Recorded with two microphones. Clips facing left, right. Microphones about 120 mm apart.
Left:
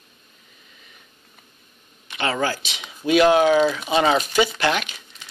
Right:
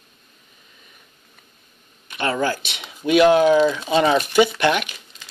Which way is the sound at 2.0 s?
50° right (ahead or behind).